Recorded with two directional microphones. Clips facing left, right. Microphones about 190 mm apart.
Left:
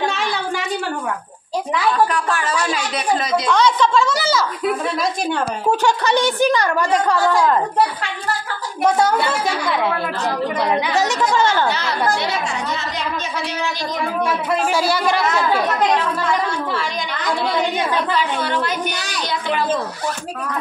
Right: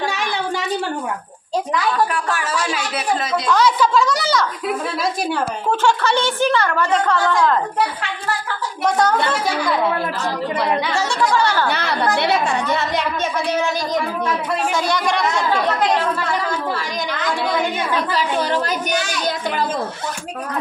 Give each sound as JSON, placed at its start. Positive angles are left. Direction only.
{"t": 2.1, "sound": "a woman's voice", "side_deg": -10}
{"t": 5.9, "sound": "a woman's voice", "side_deg": 15}
{"t": 8.8, "sound": "a woman's voice", "side_deg": 5}
{"t": 10.9, "sound": "speech", "side_deg": 20}
{"t": 11.7, "sound": "a woman's voice", "side_deg": -60}
{"t": 14.8, "sound": "a woman's voice", "side_deg": 5}
{"t": 18.1, "sound": "a woman's voice", "side_deg": -40}